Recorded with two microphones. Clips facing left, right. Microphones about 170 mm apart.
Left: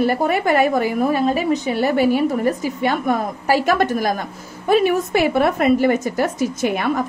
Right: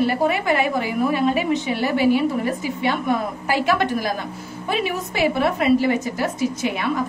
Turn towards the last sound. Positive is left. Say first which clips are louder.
# left 3 dB
turn(degrees=50)  # may be behind; listen again after turning